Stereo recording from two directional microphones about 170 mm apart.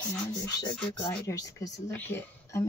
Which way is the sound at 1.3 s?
20° left (ahead or behind).